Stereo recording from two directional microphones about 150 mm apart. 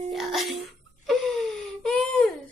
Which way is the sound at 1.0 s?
5° left (ahead or behind).